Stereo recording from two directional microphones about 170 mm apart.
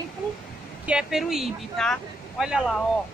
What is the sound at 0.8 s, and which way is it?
Speech, 5° right (ahead or behind).